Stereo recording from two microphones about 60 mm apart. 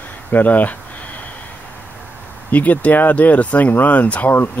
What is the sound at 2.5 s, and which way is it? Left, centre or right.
Speech, left.